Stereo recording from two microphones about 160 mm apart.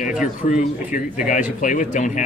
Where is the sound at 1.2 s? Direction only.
55° left (ahead or behind).